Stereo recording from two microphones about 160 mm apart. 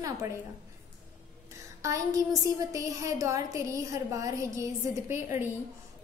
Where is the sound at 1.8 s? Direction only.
20° right (ahead or behind).